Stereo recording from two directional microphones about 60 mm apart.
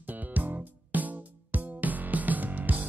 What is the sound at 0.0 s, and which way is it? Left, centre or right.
Music, right.